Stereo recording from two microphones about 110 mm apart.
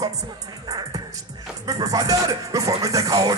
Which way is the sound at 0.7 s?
35° right (ahead or behind).